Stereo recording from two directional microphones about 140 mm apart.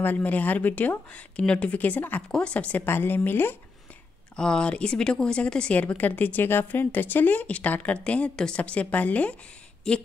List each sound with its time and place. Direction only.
0.0 s speech: 10° left (ahead or behind)